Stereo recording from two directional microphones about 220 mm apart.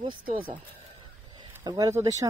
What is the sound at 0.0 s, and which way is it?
Speech, 20° right (ahead or behind).